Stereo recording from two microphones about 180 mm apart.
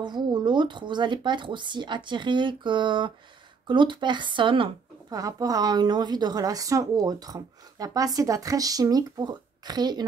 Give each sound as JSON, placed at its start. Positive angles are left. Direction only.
{"t": 0.0, "sound": "speech", "side_deg": -25}